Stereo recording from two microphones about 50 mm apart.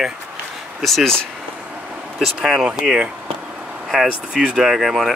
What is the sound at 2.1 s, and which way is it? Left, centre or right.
Speech, centre.